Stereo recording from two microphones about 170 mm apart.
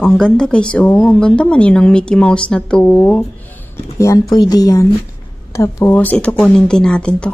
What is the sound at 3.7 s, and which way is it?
Speech, 20° left (ahead or behind).